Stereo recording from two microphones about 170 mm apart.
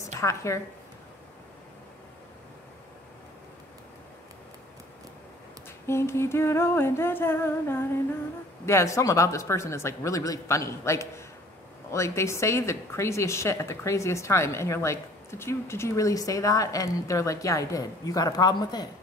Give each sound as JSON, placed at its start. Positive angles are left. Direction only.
{"t": 0.2, "sound": "a woman's voice", "side_deg": 15}
{"t": 5.9, "sound": "a woman's voice", "side_deg": 15}